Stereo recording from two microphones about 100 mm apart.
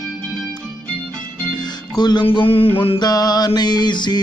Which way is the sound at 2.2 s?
70° left (ahead or behind).